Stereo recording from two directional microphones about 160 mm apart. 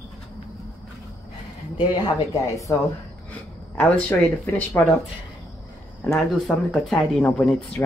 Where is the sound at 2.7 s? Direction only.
15° left (ahead or behind).